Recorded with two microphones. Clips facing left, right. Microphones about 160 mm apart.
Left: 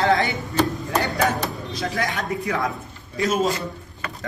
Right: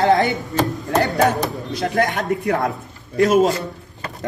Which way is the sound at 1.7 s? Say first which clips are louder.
Right 8 dB; 60° right (ahead or behind).